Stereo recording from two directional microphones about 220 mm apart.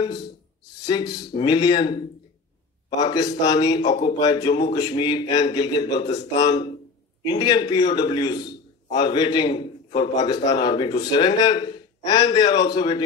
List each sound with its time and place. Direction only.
0.8 s a man's voice: 20° left (ahead or behind)
3.0 s a man's voice: 20° left (ahead or behind)